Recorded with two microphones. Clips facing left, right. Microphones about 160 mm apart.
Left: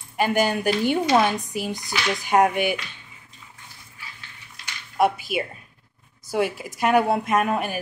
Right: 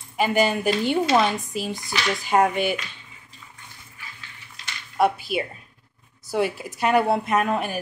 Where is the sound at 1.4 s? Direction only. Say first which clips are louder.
Even; 15° left (ahead or behind).